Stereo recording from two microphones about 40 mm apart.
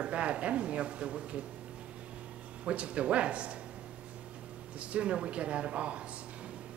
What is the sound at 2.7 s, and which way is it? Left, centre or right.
Speech, right.